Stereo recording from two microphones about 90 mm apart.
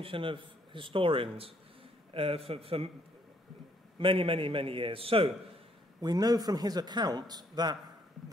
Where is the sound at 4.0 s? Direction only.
85° right.